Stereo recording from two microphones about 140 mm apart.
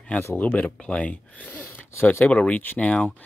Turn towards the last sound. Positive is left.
turn(degrees=10)  # may be behind; listen again after turning